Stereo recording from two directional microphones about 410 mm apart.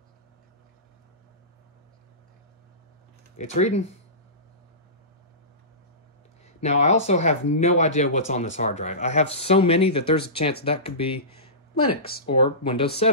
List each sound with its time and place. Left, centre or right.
3.3 s speech: centre
6.4 s speech: centre